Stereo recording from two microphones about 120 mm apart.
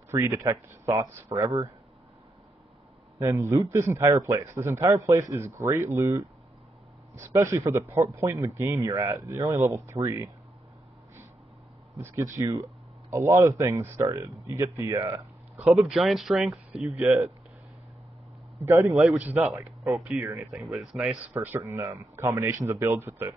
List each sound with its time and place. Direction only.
0.1 s speech: 20° right (ahead or behind)
1.0 s speech: 15° right (ahead or behind)
1.4 s speech: 30° right (ahead or behind)
3.2 s speech: 25° right (ahead or behind)
12.4 s speech: 30° right (ahead or behind)
15.5 s speech: 5° right (ahead or behind)
18.7 s speech: 25° right (ahead or behind)
19.9 s speech: 5° right (ahead or behind)
21.3 s speech: 15° right (ahead or behind)